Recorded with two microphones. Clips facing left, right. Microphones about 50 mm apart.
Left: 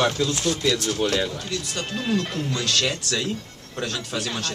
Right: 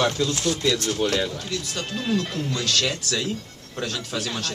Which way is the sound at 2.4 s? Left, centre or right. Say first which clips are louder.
Even; centre.